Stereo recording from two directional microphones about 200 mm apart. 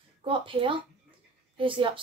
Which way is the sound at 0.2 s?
25° right (ahead or behind).